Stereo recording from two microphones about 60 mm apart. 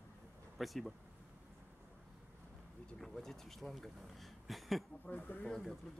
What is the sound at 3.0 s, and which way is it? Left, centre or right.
A man's voice, centre.